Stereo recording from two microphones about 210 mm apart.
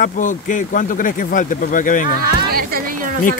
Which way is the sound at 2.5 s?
45° right (ahead or behind).